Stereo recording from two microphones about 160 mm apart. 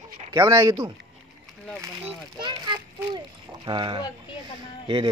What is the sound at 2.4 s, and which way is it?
A child's voice, 25° right (ahead or behind).